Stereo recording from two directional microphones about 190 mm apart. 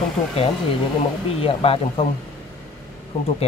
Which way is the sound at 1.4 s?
30° left (ahead or behind).